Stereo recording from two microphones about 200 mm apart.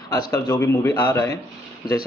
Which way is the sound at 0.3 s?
15° left (ahead or behind).